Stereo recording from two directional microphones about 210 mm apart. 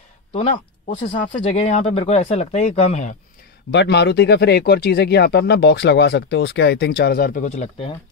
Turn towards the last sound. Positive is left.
turn(degrees=30)  # may be behind; listen again after turning